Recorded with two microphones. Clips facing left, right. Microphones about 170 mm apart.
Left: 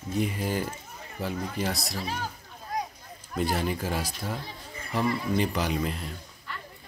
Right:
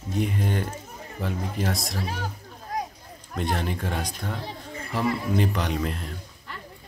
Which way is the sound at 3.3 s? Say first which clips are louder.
Even; 5° left (ahead or behind).